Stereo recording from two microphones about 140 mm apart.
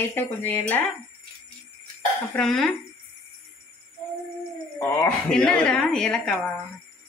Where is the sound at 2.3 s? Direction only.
5° left (ahead or behind).